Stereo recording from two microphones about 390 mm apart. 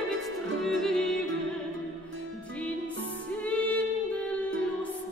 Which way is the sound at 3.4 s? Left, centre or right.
Centre.